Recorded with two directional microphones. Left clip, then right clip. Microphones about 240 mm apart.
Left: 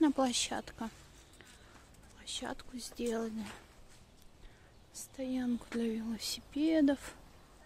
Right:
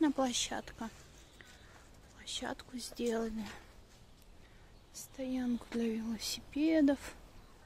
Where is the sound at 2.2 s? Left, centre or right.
Centre.